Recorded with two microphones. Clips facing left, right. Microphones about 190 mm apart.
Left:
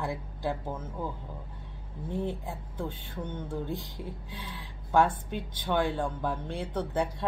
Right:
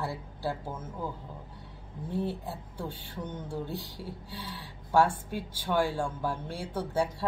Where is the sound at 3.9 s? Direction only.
15° left (ahead or behind).